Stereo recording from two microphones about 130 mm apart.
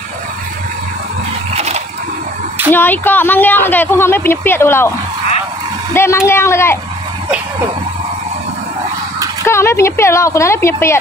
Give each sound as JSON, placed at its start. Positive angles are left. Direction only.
{"t": 1.5, "sound": "a sound", "side_deg": -55}
{"t": 2.7, "sound": "speech", "side_deg": 15}
{"t": 5.9, "sound": "a woman's voice", "side_deg": 20}
{"t": 9.5, "sound": "a woman's voice", "side_deg": 20}